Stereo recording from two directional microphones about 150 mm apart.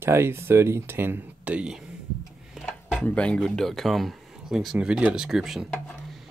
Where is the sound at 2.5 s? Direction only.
Centre (ahead or behind).